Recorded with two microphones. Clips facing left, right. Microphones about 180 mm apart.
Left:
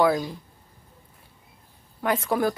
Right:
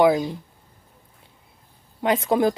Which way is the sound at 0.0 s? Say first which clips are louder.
Right 4 dB; 20° right (ahead or behind).